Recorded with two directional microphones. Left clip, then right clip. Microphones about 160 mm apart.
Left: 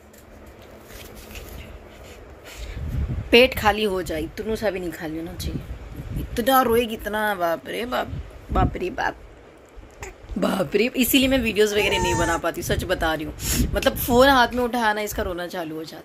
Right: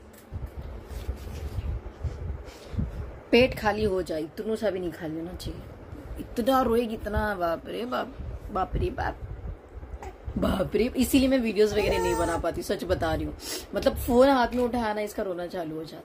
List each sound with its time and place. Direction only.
3.3 s a woman's voice: 10° left (ahead or behind)
6.3 s a woman's voice: centre (ahead or behind)
8.7 s a man's voice: 30° left (ahead or behind)
10.4 s speech: 25° left (ahead or behind)
11.0 s a woman's voice: centre (ahead or behind)